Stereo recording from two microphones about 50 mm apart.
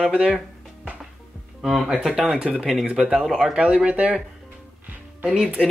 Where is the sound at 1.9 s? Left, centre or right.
Centre.